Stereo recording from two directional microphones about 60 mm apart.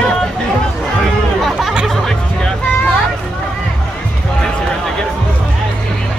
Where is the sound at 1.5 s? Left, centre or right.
Centre.